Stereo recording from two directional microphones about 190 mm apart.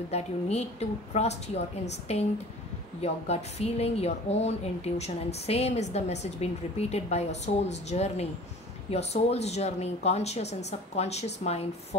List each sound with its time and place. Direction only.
0.1 s speech: 35° left (ahead or behind)